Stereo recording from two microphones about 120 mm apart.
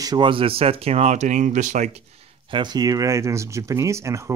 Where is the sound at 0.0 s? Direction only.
40° right (ahead or behind); by 1.9 s 90° right.